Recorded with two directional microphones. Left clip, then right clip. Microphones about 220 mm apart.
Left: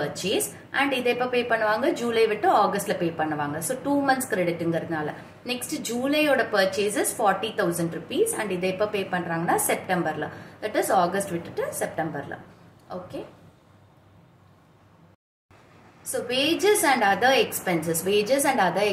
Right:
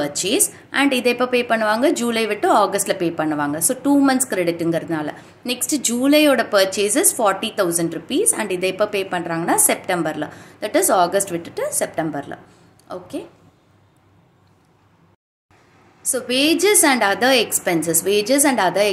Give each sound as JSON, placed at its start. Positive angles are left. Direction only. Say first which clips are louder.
{"t": 0.0, "sound": "a woman's voice", "louder": "right 6 dB", "side_deg": -55}
{"t": 16.1, "sound": "a woman's voice", "louder": "right 6 dB", "side_deg": -55}